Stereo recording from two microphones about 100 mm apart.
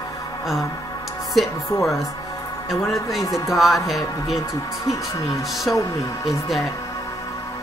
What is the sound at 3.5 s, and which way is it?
Speech, centre (ahead or behind).